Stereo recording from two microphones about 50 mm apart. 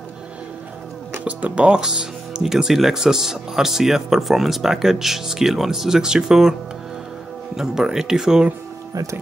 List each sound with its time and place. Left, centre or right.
1.2 s speech: right
7.5 s speech: centre